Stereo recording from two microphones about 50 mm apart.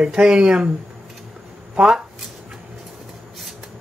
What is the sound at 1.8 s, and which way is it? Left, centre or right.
Speech, centre.